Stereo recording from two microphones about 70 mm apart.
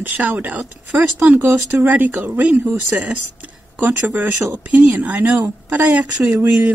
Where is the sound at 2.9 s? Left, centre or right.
Right.